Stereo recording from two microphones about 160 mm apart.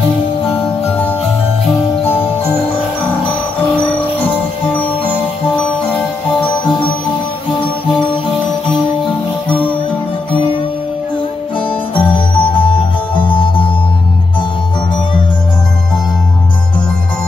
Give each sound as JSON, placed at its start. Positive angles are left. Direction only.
{"t": 0.5, "sound": "music", "side_deg": 10}
{"t": 12.1, "sound": "music", "side_deg": 30}